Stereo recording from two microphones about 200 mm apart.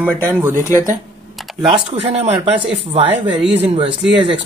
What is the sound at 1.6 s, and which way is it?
Speech, 25° right (ahead or behind).